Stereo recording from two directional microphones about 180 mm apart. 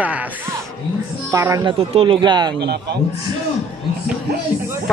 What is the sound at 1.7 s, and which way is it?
Speech, 30° right (ahead or behind).